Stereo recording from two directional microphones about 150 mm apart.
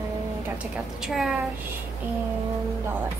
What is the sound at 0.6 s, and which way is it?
Speech, 5° right (ahead or behind).